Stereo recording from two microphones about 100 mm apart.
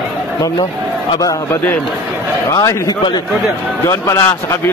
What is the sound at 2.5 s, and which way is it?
A man's voice, 40° left (ahead or behind).